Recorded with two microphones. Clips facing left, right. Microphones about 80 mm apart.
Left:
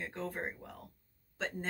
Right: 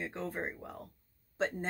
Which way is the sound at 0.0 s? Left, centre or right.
Right.